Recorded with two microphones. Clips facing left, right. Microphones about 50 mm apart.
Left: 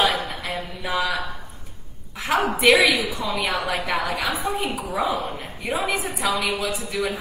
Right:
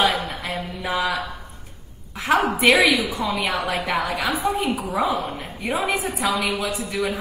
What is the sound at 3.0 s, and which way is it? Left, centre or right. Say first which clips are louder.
Speech: right 2 dB; right.